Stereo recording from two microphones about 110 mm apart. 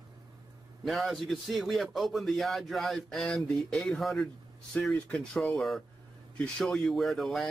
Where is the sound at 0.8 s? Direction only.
Centre (ahead or behind).